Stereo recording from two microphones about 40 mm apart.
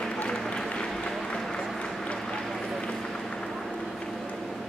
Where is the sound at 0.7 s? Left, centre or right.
Left.